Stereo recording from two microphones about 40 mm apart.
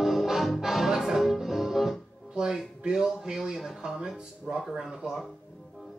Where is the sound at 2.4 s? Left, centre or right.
Centre.